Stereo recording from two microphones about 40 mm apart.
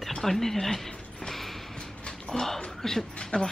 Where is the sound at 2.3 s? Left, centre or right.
Centre.